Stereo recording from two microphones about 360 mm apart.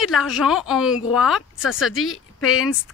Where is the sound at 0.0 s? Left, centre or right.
Centre.